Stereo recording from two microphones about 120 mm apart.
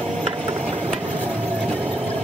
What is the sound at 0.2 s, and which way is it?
Engine, 60° right (ahead or behind).